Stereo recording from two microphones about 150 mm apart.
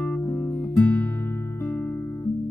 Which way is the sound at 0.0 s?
10° left (ahead or behind).